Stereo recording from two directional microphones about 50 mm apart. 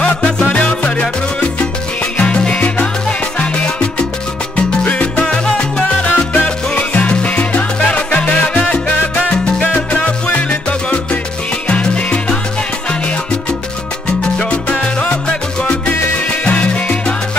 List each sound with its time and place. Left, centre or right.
0.5 s music: left
2.1 s salsa music: left
5.2 s salsa music: centre
14.4 s salsa music: left
16.4 s salsa music: left